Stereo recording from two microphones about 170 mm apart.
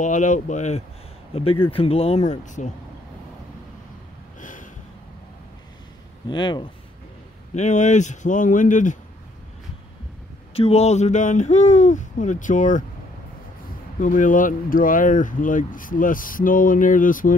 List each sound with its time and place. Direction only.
0.0 s speech: 50° left (ahead or behind)
4.4 s a sound: 50° left (ahead or behind)
6.2 s speech: 25° left (ahead or behind)
7.5 s speech: 45° left (ahead or behind)
10.5 s speech: 35° left (ahead or behind)
13.9 s speech: 50° left (ahead or behind)